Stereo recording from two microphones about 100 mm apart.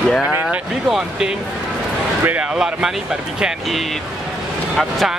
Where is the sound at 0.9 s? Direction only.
5° right (ahead or behind).